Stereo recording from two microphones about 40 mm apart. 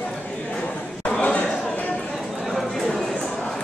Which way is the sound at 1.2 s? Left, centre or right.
Left.